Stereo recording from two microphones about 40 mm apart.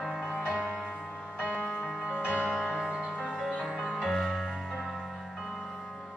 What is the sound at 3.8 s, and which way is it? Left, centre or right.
Music, centre.